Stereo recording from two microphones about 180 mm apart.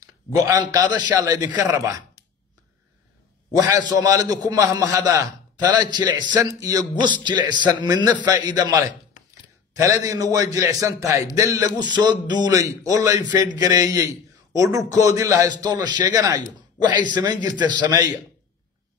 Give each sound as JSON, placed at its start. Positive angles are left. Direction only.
{"t": 0.0, "sound": "a man's voice", "side_deg": -20}
{"t": 3.5, "sound": "a man's voice", "side_deg": -20}